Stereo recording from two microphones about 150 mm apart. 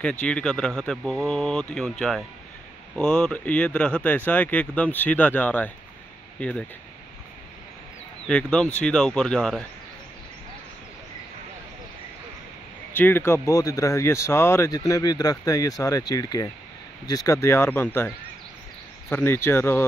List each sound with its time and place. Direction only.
0.0 s speech: 5° left (ahead or behind)
8.3 s speech: 5° left (ahead or behind)
12.9 s speech: 15° left (ahead or behind)